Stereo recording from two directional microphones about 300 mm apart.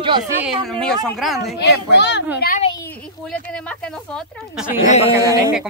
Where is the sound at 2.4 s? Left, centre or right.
Left.